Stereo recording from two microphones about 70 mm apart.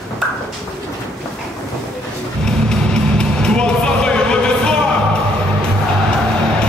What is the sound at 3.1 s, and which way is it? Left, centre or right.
Music, centre.